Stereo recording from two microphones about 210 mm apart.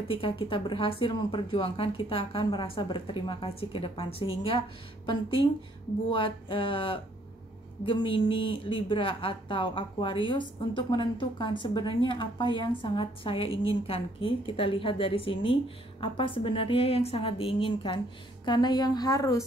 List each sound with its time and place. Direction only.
0.1 s a woman's voice: 25° left (ahead or behind)